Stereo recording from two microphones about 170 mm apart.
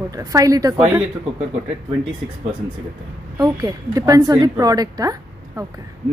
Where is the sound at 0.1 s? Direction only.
20° right (ahead or behind).